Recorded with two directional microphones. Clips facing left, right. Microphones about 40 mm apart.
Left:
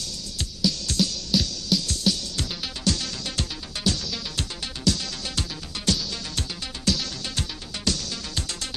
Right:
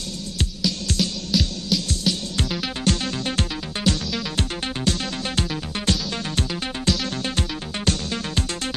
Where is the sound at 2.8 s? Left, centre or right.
Right.